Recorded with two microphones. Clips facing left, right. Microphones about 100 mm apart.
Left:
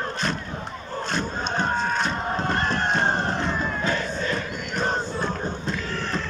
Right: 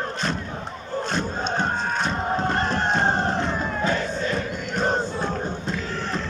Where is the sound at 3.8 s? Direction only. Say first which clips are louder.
Right 2 dB; 10° right (ahead or behind).